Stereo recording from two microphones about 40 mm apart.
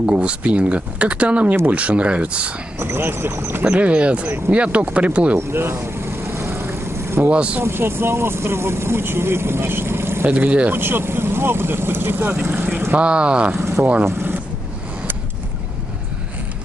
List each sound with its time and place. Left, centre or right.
0.0 s speech: right
2.8 s speech: right
3.7 s speech: right
5.5 s speech: right
6.3 s boat: right
7.2 s speech: right
7.6 s speech: right
10.3 s speech: right
10.7 s speech: right
12.9 s speech: right
14.0 s vehicle: right